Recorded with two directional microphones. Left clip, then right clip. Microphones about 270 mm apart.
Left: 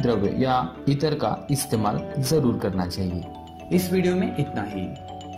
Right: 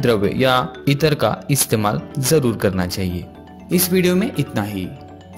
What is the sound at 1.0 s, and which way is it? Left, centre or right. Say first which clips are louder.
Speech: right 7 dB; right.